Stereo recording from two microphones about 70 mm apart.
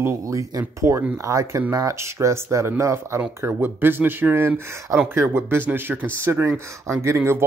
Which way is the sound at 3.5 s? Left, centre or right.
Right.